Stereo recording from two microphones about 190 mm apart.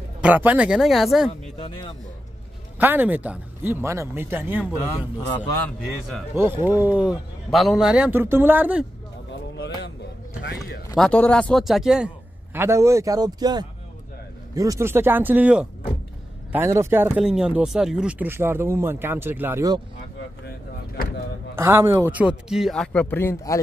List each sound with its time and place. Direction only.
0.2 s speech: 10° right (ahead or behind)
1.6 s speech: 25° left (ahead or behind)
2.8 s speech: 10° right (ahead or behind)
6.3 s speech: 10° right (ahead or behind)
10.4 s clip-clop: 60° left (ahead or behind)
11.0 s speech: 5° left (ahead or behind)
12.5 s speech: 15° right (ahead or behind)
21.5 s speech: 15° right (ahead or behind); by 23.6 s 15° left (ahead or behind)